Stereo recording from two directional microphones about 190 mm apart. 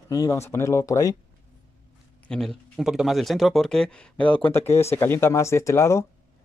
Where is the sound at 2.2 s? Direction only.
5° left (ahead or behind).